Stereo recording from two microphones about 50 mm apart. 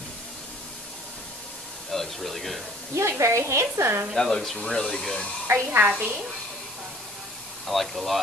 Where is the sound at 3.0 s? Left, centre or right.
Right.